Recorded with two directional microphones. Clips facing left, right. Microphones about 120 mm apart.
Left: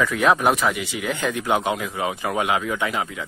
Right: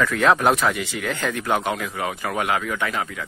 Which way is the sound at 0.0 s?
10° left (ahead or behind).